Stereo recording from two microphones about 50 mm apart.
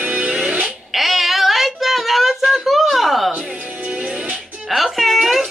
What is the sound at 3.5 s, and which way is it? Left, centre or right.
Music, right.